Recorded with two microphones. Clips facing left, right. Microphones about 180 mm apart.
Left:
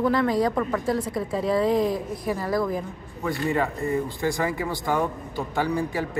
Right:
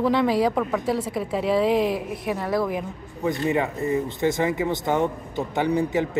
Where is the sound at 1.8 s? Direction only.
70° right (ahead or behind).